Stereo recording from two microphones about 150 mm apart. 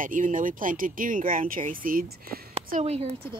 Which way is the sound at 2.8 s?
45° right (ahead or behind).